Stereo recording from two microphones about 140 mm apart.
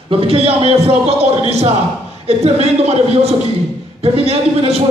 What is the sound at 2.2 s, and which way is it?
Speech, 45° right (ahead or behind).